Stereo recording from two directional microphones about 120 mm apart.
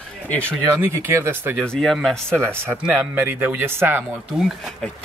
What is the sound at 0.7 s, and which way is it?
Speech, 20° right (ahead or behind).